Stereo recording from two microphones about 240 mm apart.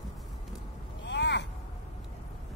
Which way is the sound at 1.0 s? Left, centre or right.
Left.